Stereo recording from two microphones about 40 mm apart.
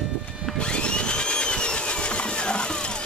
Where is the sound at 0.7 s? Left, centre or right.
Left.